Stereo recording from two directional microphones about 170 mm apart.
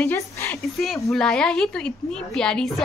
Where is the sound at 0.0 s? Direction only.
15° left (ahead or behind).